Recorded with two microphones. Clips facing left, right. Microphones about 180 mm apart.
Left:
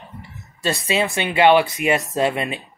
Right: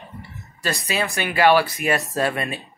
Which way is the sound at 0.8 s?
20° left (ahead or behind).